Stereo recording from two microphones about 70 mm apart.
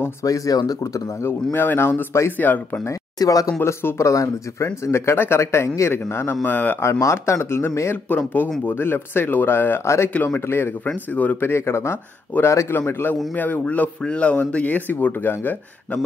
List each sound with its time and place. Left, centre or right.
0.2 s speech: left
1.2 s a man's voice: left
3.2 s speech: left
3.6 s speech: left
4.8 s a man's voice: left
6.4 s speech: left
6.8 s a man's voice: left
8.1 s a man's voice: left
10.1 s speech: left
10.4 s a man's voice: left
11.1 s speech: left
11.5 s a man's voice: left